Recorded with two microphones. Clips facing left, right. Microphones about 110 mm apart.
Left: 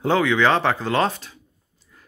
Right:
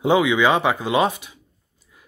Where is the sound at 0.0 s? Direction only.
15° right (ahead or behind).